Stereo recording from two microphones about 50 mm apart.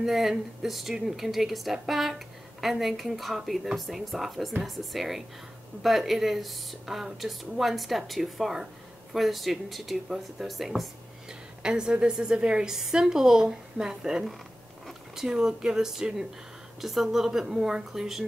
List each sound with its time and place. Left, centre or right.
0.0 s speech: centre
11.2 s a woman's voice: centre